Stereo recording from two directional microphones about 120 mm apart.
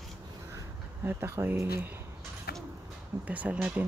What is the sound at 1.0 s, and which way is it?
Speech, 20° right (ahead or behind).